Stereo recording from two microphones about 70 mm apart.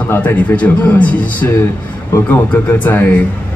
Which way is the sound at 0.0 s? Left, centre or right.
Left.